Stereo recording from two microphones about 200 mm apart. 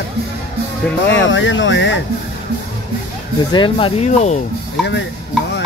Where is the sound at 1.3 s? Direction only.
65° left (ahead or behind).